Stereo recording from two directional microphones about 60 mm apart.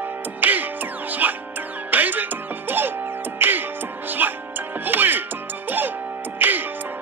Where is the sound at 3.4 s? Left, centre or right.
Right.